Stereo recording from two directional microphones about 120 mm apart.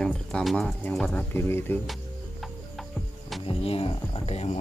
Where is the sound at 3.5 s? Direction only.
55° left (ahead or behind).